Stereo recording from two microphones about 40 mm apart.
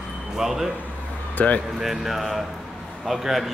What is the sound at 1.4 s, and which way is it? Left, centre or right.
Speech, left.